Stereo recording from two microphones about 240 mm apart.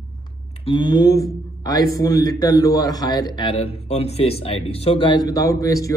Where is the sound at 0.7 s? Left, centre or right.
Centre.